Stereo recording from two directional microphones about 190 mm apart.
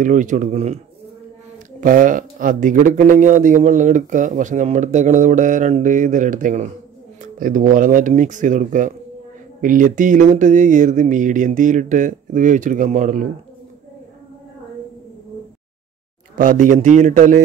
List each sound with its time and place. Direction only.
0.0 s a man's voice: 40° right (ahead or behind)
1.8 s a man's voice: 45° right (ahead or behind)
16.3 s a man's voice: 45° right (ahead or behind)